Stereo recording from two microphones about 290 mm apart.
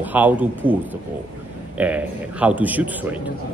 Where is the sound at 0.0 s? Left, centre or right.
Centre.